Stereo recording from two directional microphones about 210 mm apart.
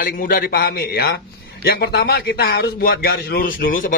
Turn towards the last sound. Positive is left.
turn(degrees=40)  # may be behind; listen again after turning